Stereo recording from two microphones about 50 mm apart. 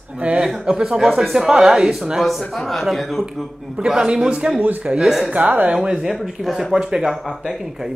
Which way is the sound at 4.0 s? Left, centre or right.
Centre.